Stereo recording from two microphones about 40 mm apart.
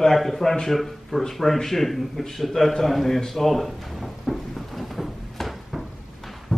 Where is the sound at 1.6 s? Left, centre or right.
Centre.